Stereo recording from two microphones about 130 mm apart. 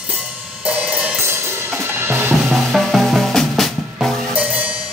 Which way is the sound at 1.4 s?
20° right (ahead or behind).